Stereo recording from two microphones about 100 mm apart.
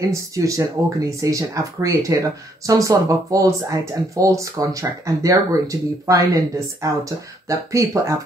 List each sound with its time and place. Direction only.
0.0 s speech: 35° right (ahead or behind)